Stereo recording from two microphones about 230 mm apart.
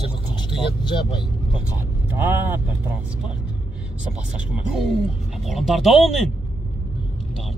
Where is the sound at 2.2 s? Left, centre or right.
Centre.